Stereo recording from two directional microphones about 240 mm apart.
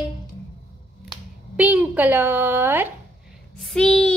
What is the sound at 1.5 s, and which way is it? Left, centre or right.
A woman's voice, centre.